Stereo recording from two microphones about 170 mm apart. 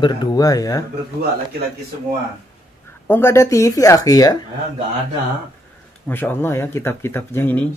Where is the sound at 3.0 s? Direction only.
15° left (ahead or behind).